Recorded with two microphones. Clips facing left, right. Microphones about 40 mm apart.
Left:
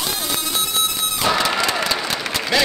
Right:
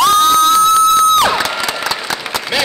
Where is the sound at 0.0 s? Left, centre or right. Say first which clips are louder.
Right 16 dB; right.